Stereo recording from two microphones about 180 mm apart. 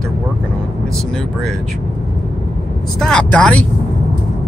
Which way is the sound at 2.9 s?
5° left (ahead or behind).